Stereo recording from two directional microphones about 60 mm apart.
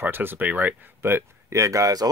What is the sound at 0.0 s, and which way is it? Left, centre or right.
Speech, right.